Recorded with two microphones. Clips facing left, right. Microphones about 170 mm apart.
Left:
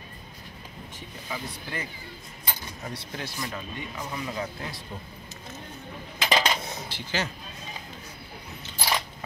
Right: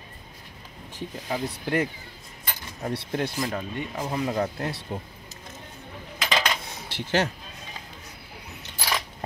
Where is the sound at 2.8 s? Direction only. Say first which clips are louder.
Right 10 dB; 55° right (ahead or behind).